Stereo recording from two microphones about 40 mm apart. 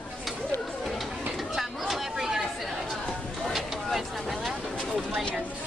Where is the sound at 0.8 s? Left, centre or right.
Centre.